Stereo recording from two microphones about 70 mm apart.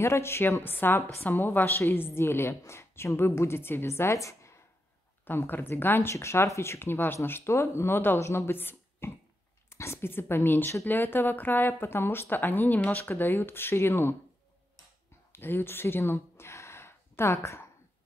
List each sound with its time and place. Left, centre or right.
0.0 s a woman's voice: left
5.2 s a woman's voice: left
6.1 s a woman's voice: left
15.3 s a sound: left